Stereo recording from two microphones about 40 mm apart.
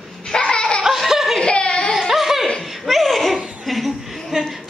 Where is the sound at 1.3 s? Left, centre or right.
Left.